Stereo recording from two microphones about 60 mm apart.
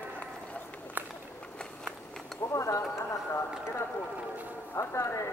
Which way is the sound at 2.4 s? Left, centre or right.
Left.